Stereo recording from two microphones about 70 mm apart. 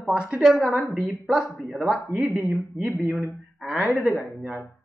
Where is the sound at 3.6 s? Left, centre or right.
Centre.